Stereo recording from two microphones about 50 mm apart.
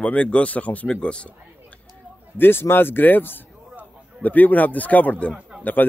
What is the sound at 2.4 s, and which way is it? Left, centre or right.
A man's voice, left.